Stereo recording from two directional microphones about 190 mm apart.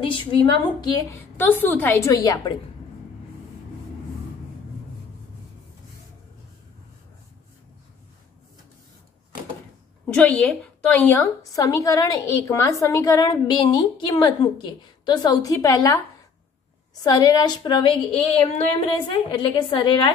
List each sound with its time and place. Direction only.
0.0 s a woman's voice: 25° left (ahead or behind)
10.0 s a woman's voice: 5° left (ahead or behind)
17.0 s a woman's voice: 20° left (ahead or behind)